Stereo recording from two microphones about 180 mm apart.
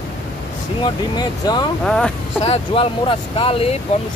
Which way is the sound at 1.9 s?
5° left (ahead or behind).